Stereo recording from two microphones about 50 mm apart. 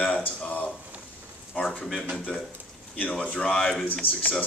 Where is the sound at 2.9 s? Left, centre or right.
Left.